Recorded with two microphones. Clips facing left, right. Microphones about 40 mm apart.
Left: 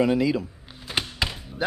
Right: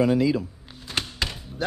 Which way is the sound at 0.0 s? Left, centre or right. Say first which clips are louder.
Right 1 dB; left.